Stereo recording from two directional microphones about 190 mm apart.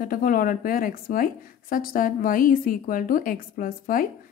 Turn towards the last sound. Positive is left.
turn(degrees=50)  # may be behind; listen again after turning